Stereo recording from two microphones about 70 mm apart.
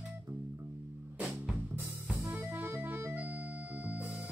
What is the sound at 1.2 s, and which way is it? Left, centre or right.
Music, centre.